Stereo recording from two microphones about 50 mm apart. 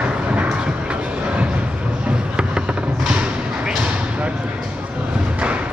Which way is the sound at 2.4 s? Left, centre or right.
Right.